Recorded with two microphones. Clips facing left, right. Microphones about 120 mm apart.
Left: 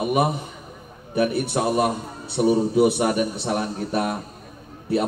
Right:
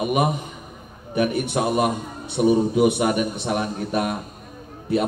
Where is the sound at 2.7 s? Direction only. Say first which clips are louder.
Even; 35° left (ahead or behind).